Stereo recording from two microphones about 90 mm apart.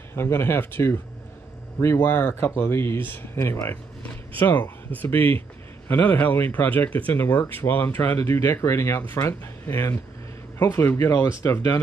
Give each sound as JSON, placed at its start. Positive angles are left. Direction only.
{"t": 0.1, "sound": "speech", "side_deg": 25}
{"t": 3.3, "sound": "speech", "side_deg": 40}
{"t": 4.4, "sound": "speech", "side_deg": 20}
{"t": 8.3, "sound": "speech", "side_deg": 30}